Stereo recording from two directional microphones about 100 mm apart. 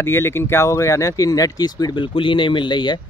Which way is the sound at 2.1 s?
60° left (ahead or behind).